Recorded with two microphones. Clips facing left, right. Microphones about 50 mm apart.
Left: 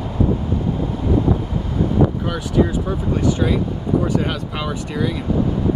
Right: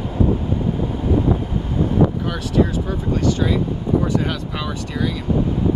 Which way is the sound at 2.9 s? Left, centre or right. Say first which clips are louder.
Left 1 dB; centre.